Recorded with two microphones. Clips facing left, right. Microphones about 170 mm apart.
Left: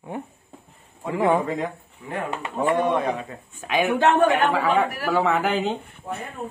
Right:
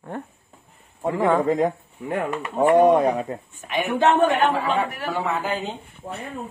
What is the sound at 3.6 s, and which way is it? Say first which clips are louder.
Speech: left 4 dB; 90° left.